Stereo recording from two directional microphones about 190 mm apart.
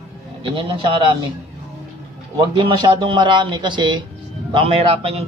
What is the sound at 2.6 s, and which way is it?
Speech, 25° right (ahead or behind).